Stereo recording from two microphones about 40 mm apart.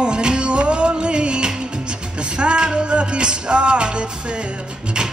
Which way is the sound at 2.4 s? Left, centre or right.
Right.